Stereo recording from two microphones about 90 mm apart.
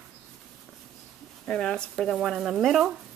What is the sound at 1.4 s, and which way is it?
Speech, 5° left (ahead or behind).